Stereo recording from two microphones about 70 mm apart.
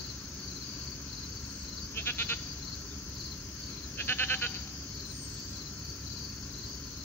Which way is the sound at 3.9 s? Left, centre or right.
Left.